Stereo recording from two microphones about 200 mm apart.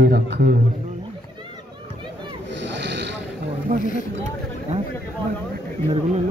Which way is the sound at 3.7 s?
40° right (ahead or behind).